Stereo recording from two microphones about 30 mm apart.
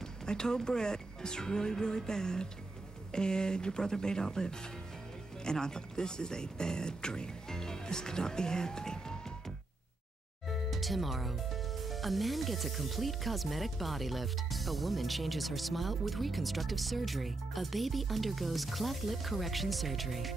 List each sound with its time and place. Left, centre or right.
0.3 s speech: left
10.5 s speech: centre